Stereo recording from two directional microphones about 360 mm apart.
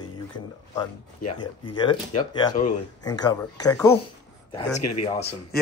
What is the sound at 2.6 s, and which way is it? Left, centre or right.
Speech, left.